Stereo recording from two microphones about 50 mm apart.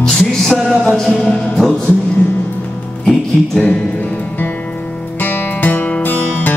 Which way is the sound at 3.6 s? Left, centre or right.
Centre.